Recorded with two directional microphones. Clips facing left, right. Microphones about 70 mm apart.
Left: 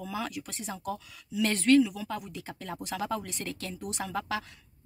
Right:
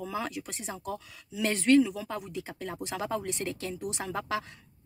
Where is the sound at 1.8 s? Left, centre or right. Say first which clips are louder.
Even; right.